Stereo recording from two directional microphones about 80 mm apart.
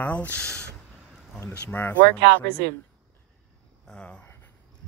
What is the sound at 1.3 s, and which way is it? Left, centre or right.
Speech, left.